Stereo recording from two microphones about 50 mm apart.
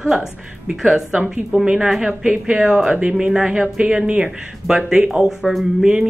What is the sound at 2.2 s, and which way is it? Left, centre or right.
Speech, centre.